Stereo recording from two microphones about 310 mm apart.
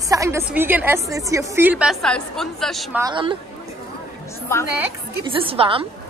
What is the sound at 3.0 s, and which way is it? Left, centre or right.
Speech, centre.